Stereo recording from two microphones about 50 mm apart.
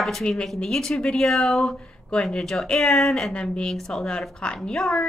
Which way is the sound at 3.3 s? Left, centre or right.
Centre.